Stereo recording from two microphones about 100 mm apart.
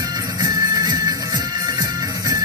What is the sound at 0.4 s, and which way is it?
Music, 35° right (ahead or behind).